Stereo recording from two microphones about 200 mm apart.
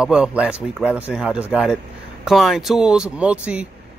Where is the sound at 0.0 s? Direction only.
5° right (ahead or behind).